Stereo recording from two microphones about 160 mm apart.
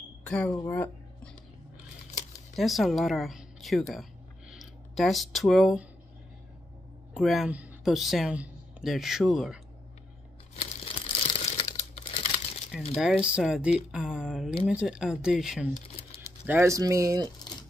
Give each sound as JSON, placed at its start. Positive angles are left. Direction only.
{"t": 0.3, "sound": "speech", "side_deg": 5}
{"t": 2.5, "sound": "speech", "side_deg": 0}
{"t": 7.2, "sound": "speech", "side_deg": -5}
{"t": 10.5, "sound": "crumpling", "side_deg": 35}
{"t": 12.7, "sound": "speech", "side_deg": 0}
{"t": 15.7, "sound": "typing", "side_deg": 45}
{"t": 16.4, "sound": "speech", "side_deg": -15}